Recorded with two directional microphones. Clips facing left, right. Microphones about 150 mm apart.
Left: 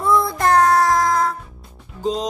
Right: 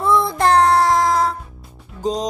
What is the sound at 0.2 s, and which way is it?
Music, 25° right (ahead or behind).